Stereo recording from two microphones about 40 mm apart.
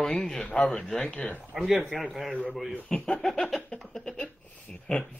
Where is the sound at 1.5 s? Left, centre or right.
Centre.